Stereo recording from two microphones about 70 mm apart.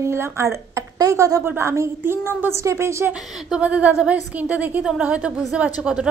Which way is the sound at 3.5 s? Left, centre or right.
Right.